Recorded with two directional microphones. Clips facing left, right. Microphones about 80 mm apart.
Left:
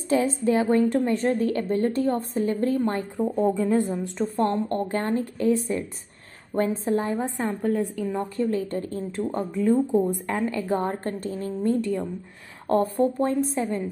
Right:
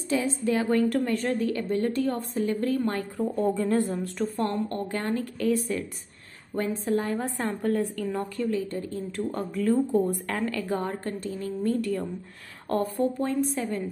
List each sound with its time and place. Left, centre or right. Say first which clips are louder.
0.1 s a woman's voice: left 4 dB; left
0.6 s a woman's voice: left 3 dB; left
3.3 s speech: left 3 dB; centre
4.4 s a woman's voice: left 6 dB; left
7.2 s speech: left 2 dB; centre
8.4 s a woman's voice: left 4 dB; left
9.2 s speech: left 3 dB; left
10.7 s a woman's voice: left 4 dB; left
11.6 s a woman's voice: left 3 dB; left